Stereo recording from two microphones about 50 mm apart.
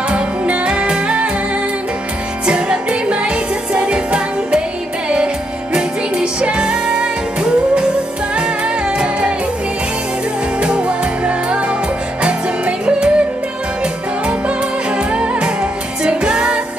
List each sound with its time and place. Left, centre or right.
0.1 s music: right
2.4 s music: centre
8.4 s music: centre
10.6 s music: right
15.1 s music: centre